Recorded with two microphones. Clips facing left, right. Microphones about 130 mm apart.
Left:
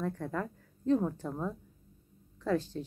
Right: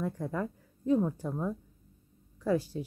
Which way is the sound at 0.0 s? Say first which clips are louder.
Right 1 dB; 10° right (ahead or behind).